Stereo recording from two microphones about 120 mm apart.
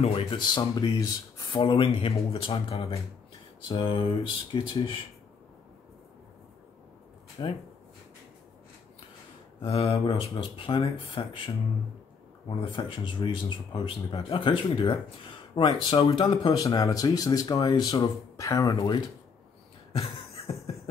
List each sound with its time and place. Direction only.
0.0 s speech: 50° left (ahead or behind)
0.7 s speech: 30° left (ahead or behind)
1.6 s speech: 50° left (ahead or behind)
3.6 s speech: 45° left (ahead or behind)
7.4 s speech: 40° left (ahead or behind)
9.6 s speech: 55° left (ahead or behind); by 18.9 s 30° left (ahead or behind)